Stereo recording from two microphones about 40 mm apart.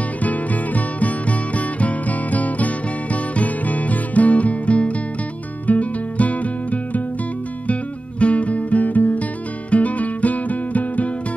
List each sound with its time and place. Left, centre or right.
0.2 s music: left
8.2 s music: left